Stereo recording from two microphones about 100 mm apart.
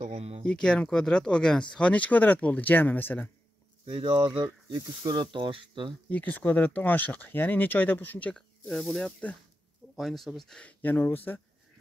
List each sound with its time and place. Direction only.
0.0 s a sound: 90° right
0.4 s speech: 10° left (ahead or behind)
3.8 s speech: 65° right (ahead or behind)
4.7 s speech: 45° right (ahead or behind)
6.0 s speech: 15° left (ahead or behind)
10.8 s speech: 20° left (ahead or behind)